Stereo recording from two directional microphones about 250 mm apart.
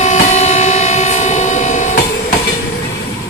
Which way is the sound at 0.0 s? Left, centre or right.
Left.